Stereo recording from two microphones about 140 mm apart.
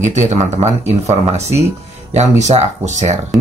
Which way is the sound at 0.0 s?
60° right (ahead or behind).